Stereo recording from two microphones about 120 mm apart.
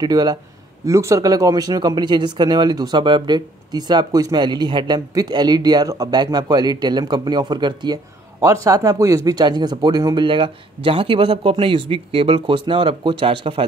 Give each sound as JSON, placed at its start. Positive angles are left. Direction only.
{"t": 0.0, "sound": "speech", "side_deg": -35}